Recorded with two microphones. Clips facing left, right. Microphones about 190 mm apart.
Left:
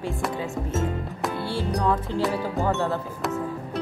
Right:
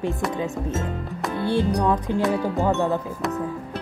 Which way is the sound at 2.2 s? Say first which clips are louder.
Right 3 dB; centre (ahead or behind).